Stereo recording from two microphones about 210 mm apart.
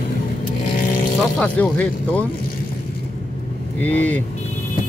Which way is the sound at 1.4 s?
5° left (ahead or behind).